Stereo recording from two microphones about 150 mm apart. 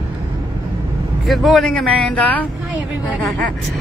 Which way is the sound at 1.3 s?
Centre (ahead or behind).